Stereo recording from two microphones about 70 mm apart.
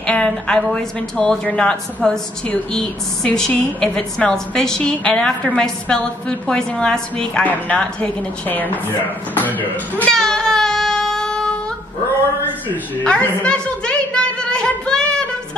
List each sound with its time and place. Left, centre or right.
0.0 s speech: centre
8.5 s speech: left
10.1 s music: centre
13.0 s a sound: centre